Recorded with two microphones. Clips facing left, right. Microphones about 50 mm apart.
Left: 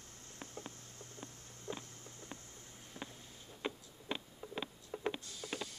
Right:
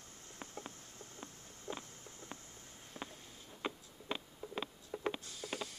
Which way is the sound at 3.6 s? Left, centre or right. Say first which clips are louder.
Even; centre.